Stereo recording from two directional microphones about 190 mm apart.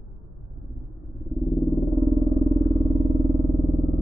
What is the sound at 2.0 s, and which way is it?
Vehicle, centre (ahead or behind).